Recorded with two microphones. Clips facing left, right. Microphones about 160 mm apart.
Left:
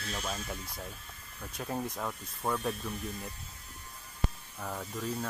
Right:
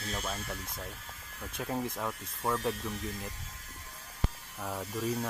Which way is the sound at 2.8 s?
90° right.